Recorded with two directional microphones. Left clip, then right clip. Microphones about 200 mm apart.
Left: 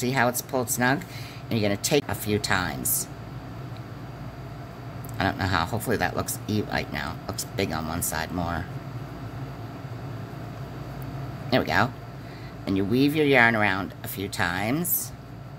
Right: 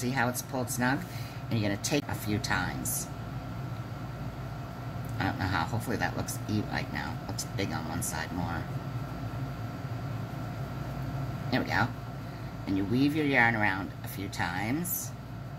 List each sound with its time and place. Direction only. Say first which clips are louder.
0.0 s speech: left 6 dB; 55° left (ahead or behind)
5.1 s speech: left 6 dB; 55° left (ahead or behind)
11.5 s speech: left 7 dB; 55° left (ahead or behind)